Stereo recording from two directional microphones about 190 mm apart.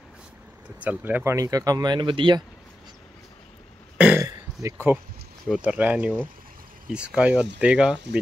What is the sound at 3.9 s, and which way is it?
Burping, 5° right (ahead or behind).